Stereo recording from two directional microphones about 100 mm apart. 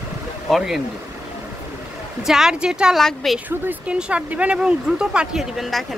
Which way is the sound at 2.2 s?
5° right (ahead or behind).